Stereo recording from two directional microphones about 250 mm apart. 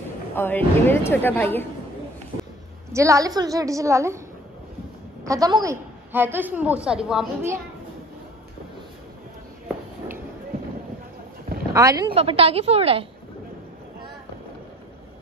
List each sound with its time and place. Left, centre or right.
0.3 s a woman's voice: centre
2.9 s a woman's voice: centre
5.2 s a woman's voice: centre
11.7 s a woman's voice: centre